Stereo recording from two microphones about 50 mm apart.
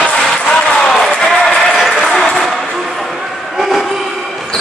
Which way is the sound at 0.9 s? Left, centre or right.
Centre.